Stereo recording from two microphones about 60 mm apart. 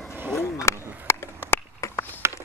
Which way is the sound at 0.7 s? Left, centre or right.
Left.